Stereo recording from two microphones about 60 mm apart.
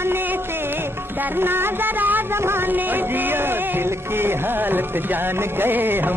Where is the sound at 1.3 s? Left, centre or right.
Right.